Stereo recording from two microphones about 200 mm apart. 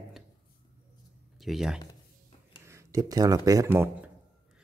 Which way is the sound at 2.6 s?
15° right (ahead or behind).